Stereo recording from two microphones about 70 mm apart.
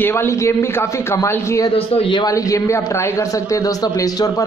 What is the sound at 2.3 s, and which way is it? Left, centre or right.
A man's voice, left.